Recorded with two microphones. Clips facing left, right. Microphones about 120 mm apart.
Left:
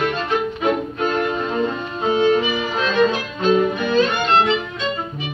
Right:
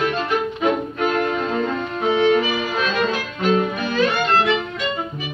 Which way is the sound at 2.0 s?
20° left (ahead or behind).